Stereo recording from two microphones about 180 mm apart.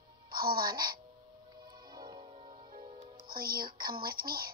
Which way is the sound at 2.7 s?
50° right (ahead or behind).